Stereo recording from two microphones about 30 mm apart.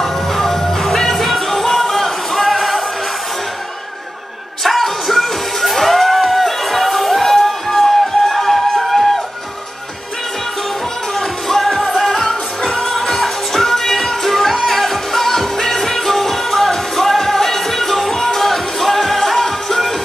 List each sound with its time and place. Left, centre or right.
0.0 s music: centre
4.6 s music: centre
11.1 s music: centre